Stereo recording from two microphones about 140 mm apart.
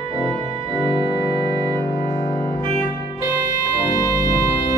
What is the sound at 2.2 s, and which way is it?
Music, 30° left (ahead or behind).